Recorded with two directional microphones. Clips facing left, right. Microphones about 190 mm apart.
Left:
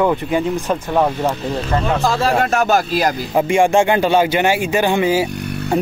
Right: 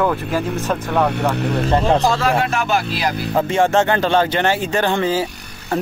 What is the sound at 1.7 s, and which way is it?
Speech, 30° right (ahead or behind).